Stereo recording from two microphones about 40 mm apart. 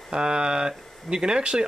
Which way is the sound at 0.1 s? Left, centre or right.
Right.